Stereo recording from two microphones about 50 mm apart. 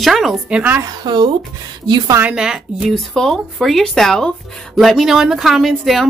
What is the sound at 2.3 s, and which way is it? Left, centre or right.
Speech, centre.